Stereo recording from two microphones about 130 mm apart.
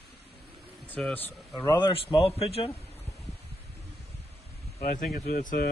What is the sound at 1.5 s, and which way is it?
A man's voice, 35° left (ahead or behind).